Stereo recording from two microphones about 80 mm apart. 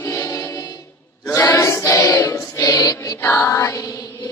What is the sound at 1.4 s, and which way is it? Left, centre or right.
Music, left.